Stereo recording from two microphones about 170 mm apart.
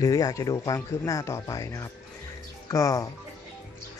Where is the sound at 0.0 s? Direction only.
20° left (ahead or behind).